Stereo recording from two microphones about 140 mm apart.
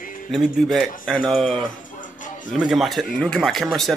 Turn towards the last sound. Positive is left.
turn(degrees=0)  # may be behind; listen again after turning